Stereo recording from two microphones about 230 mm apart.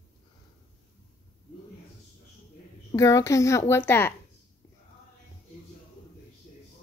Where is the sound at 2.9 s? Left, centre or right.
Centre.